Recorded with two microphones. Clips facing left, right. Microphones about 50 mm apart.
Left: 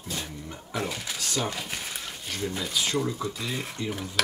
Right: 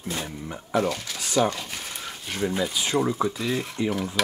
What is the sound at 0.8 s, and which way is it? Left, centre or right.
Speech, centre.